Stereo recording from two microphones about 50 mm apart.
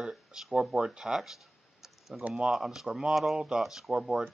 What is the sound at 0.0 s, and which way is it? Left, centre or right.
Speech, centre.